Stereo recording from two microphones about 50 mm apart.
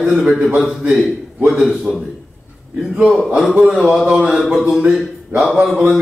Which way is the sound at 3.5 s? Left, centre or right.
Right.